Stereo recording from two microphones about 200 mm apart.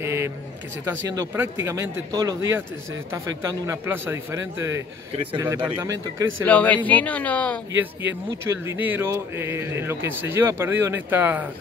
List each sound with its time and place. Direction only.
0.0 s a sound: 15° right (ahead or behind)
0.8 s speech: 15° right (ahead or behind)
6.4 s speech: 5° left (ahead or behind)
8.5 s speech: 10° right (ahead or behind)